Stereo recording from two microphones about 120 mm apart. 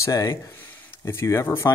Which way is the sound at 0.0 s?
25° left (ahead or behind).